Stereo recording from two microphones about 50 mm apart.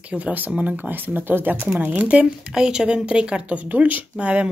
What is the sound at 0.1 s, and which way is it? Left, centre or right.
Speech, right.